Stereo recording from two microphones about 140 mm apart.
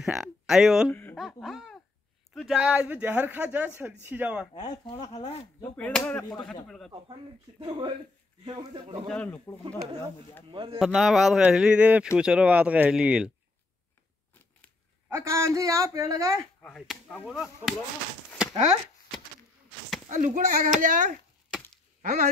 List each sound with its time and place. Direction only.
0.0 s speech: centre (ahead or behind)
1.1 s a sound: centre (ahead or behind)
2.3 s speech: 5° right (ahead or behind)
5.1 s speech: 50° left (ahead or behind)
5.6 s speech: 10° left (ahead or behind)
7.6 s a man's voice: 35° right (ahead or behind)
9.0 s speech: 10° left (ahead or behind)
10.5 s a man's voice: 35° right (ahead or behind)
10.8 s speech: centre (ahead or behind)
15.0 s speech: 20° right (ahead or behind)
16.6 s speech: centre (ahead or behind)
20.1 s a child's voice: 70° right (ahead or behind)